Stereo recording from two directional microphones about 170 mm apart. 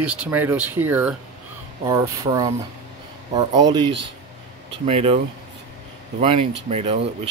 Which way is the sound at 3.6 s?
25° right (ahead or behind).